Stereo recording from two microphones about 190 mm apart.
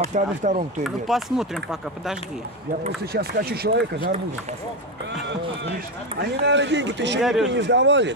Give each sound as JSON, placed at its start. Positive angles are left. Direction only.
{"t": 0.1, "sound": "speech", "side_deg": -40}
{"t": 0.8, "sound": "speech", "side_deg": 0}
{"t": 3.1, "sound": "speech", "side_deg": -55}
{"t": 6.4, "sound": "speech", "side_deg": -70}
{"t": 7.2, "sound": "speech", "side_deg": 0}
{"t": 7.5, "sound": "speech", "side_deg": -70}